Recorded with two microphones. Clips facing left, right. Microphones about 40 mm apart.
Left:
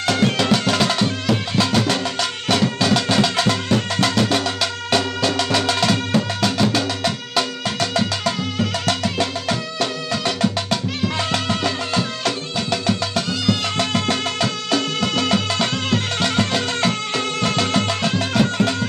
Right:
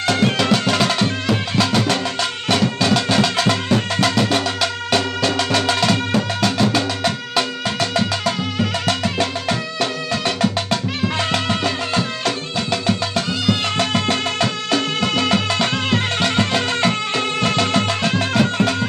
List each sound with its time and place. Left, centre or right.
0.0 s music: centre